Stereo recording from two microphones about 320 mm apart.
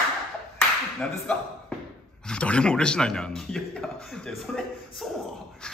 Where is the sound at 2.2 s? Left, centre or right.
Centre.